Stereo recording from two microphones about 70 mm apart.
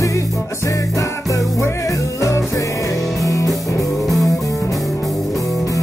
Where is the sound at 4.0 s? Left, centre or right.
Centre.